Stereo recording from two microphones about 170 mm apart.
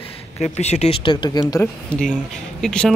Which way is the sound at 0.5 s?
40° left (ahead or behind).